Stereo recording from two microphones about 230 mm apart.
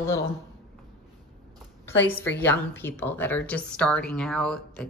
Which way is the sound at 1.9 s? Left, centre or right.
Centre.